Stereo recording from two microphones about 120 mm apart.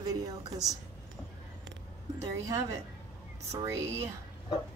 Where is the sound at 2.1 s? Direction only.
25° right (ahead or behind).